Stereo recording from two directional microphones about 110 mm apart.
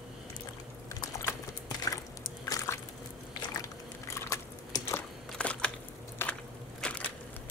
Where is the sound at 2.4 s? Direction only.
25° left (ahead or behind).